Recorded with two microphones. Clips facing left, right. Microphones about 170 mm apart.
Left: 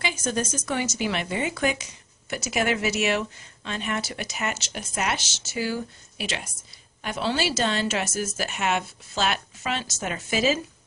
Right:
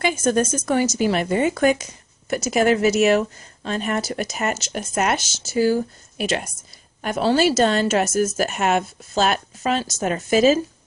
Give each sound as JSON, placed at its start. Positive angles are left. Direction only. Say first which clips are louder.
{"t": 0.0, "sound": "a woman's voice", "louder": "right 8 dB", "side_deg": -50}